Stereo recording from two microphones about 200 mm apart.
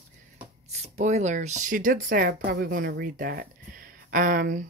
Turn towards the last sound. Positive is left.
turn(degrees=-45)  # may be behind; listen again after turning